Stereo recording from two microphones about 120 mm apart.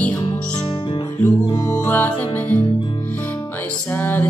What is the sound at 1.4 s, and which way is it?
Music, 30° left (ahead or behind).